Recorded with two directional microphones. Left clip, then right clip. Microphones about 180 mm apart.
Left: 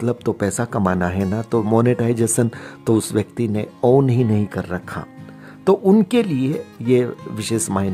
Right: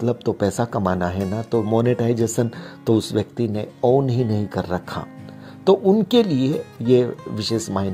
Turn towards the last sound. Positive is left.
turn(degrees=20)  # may be behind; listen again after turning